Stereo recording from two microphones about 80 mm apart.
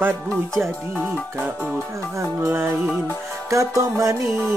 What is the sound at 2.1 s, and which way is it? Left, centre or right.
Music, right.